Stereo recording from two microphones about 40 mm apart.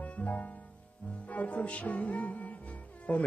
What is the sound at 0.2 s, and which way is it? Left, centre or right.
Music, left.